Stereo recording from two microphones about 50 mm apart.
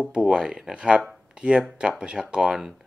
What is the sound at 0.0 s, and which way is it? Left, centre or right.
Speech, centre.